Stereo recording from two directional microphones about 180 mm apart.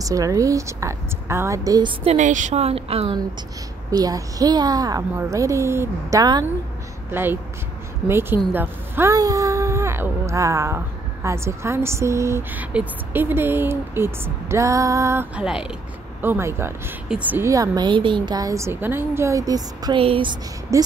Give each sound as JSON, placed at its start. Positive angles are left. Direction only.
{"t": 0.0, "sound": "a woman's voice", "side_deg": -20}
{"t": 2.1, "sound": "speech", "side_deg": -45}
{"t": 3.9, "sound": "a woman's voice", "side_deg": -20}